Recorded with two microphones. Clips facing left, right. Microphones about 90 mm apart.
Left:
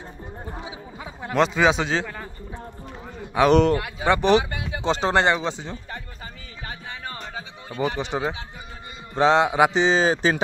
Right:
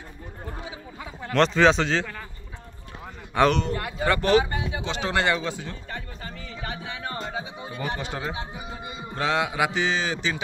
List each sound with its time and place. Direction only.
1.3 s speech: 5° left (ahead or behind)
3.5 s speech: 70° left (ahead or behind)
4.0 s speech: 20° left (ahead or behind)
4.5 s speech: 25° right (ahead or behind)
4.8 s speech: 30° left (ahead or behind)
7.1 s music: 10° right (ahead or behind)
8.0 s speech: 20° left (ahead or behind); by 10.3 s 35° left (ahead or behind)